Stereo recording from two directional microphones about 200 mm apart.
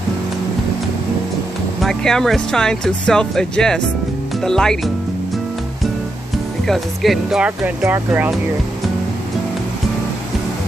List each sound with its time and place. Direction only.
1.8 s speech: centre (ahead or behind)
6.6 s speech: centre (ahead or behind)